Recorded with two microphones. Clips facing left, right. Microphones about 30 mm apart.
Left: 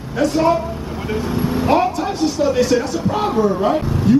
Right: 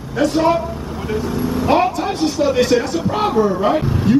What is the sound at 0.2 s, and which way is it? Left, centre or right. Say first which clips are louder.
Speech: even; centre.